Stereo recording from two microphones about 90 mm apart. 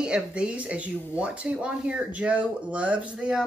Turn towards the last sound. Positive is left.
turn(degrees=-10)  # may be behind; listen again after turning